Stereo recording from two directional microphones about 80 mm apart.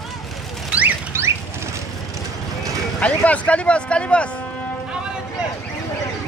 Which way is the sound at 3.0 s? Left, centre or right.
Centre.